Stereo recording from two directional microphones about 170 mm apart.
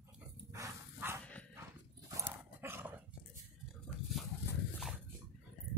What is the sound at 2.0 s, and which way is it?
Dog, 15° right (ahead or behind).